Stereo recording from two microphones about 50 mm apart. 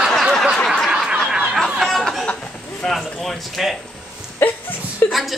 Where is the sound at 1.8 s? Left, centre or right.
Centre.